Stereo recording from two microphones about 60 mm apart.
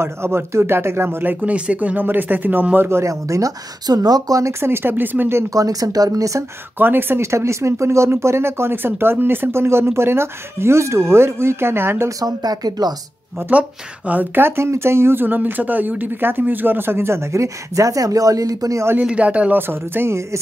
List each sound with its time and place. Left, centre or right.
0.0 s speech: right
2.9 s speech: right
4.5 s speech: right
5.5 s speech: right
6.8 s speech: right
7.2 s speech: right
12.2 s speech: right
13.5 s speech: right
14.4 s speech: right
15.2 s speech: right
19.0 s speech: right
19.7 s speech: right